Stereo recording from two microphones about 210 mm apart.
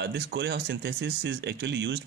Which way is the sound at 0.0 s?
55° right (ahead or behind).